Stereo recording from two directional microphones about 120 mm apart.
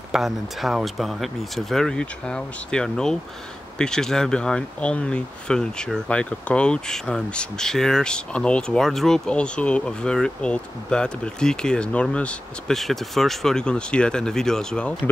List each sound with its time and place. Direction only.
0.1 s speech: 5° right (ahead or behind)